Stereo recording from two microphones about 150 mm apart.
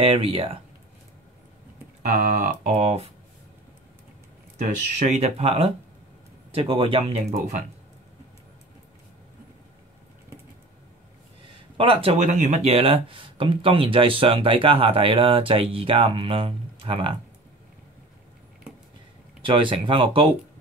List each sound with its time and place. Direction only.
0.0 s speech: 40° right (ahead or behind)
2.1 s speech: 60° right (ahead or behind)
2.7 s speech: 45° right (ahead or behind)
4.9 s speech: 50° right (ahead or behind)
11.7 s speech: 35° right (ahead or behind)
12.3 s speech: 50° right (ahead or behind); by 17.1 s 35° right (ahead or behind)
19.4 s speech: 35° right (ahead or behind)